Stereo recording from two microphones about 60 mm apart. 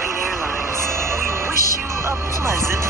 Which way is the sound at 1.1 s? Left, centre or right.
Right.